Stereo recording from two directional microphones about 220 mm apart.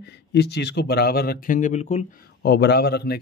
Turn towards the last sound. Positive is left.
turn(degrees=45)  # may be behind; listen again after turning